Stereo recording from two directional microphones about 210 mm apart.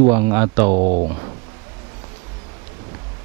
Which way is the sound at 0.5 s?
30° right (ahead or behind).